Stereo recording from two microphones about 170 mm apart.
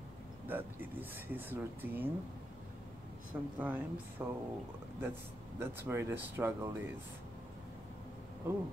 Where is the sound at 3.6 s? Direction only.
10° right (ahead or behind).